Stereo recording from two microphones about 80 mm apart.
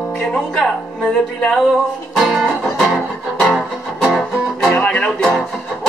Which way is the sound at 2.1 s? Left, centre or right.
Centre.